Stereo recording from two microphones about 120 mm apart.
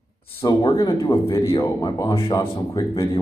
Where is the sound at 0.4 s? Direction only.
40° left (ahead or behind).